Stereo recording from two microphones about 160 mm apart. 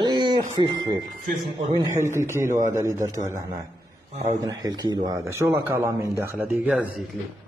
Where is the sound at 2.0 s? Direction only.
15° right (ahead or behind).